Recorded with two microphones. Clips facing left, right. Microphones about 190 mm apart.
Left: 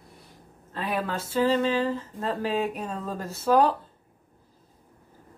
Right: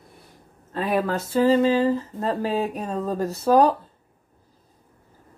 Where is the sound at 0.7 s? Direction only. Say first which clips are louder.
Right 6 dB; 45° right (ahead or behind).